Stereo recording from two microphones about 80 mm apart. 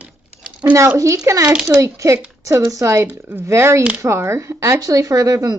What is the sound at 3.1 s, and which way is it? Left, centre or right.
A child's voice, right.